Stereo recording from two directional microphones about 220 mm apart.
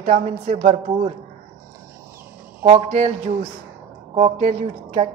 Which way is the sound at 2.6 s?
30° right (ahead or behind).